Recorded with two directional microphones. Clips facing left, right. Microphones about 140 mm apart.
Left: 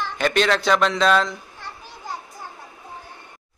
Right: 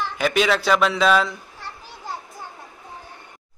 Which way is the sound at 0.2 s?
5° right (ahead or behind).